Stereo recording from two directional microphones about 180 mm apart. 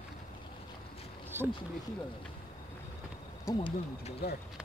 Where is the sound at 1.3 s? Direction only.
10° right (ahead or behind).